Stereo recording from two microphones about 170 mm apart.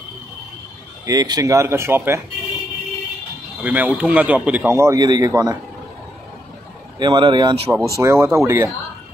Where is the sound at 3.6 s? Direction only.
10° right (ahead or behind).